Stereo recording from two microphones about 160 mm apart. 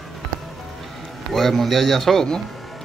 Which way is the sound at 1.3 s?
Centre (ahead or behind).